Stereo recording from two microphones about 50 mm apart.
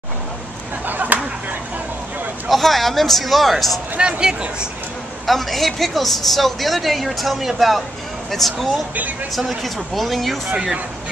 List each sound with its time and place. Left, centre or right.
0.8 s a sound: right
2.4 s a man's voice: centre
4.0 s speech: centre
5.2 s a man's voice: centre